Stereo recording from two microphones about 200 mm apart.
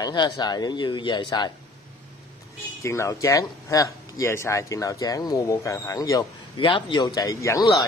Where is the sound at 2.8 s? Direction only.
15° left (ahead or behind).